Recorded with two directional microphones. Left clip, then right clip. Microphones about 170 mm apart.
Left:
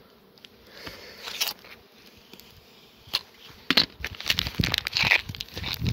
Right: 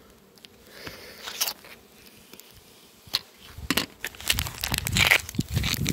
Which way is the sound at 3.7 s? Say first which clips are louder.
Left 5 dB; 25° left (ahead or behind).